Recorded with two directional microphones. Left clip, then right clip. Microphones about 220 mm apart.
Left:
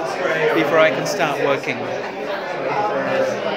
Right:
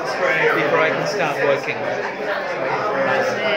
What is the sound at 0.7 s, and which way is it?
Speech, 50° left (ahead or behind).